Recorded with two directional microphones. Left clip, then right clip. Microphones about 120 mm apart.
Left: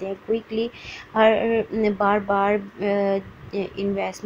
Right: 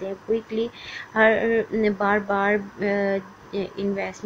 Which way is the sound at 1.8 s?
10° left (ahead or behind).